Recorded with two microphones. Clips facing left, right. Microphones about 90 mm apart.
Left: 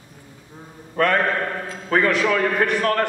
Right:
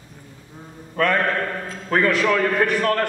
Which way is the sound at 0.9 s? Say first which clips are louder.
Left 1 dB; 5° left (ahead or behind).